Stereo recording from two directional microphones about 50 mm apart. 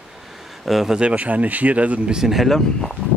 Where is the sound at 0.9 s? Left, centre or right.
Right.